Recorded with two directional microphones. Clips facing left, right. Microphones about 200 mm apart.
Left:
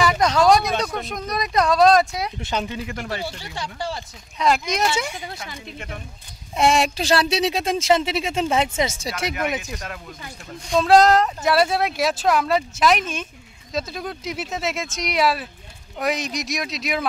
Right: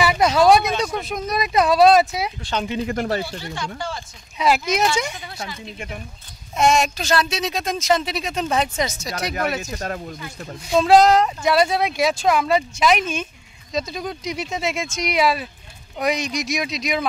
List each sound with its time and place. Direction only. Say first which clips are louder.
0.0 s speech: right 2 dB; 5° right (ahead or behind)
2.5 s speech: even; 5° left (ahead or behind)
2.9 s speech: right 6 dB; 40° right (ahead or behind)
3.5 s speech: even; 35° left (ahead or behind)
4.4 s speech: right 2 dB; 5° right (ahead or behind)
6.5 s speech: right 1 dB; 30° left (ahead or behind)
9.7 s speech: right 5 dB; 40° right (ahead or behind)
10.7 s speech: right 1 dB; centre (ahead or behind)